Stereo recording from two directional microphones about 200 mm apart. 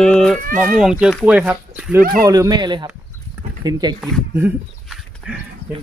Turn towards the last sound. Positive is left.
turn(degrees=-5)  # may be behind; listen again after turning